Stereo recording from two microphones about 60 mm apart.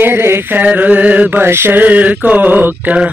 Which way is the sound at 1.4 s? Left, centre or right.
Right.